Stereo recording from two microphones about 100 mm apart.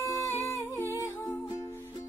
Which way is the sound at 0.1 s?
25° left (ahead or behind).